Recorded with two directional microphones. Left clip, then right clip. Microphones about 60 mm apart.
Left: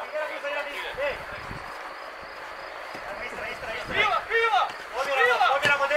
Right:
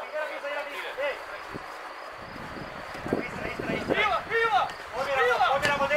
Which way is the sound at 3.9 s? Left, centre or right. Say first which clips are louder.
Left 2 dB; centre.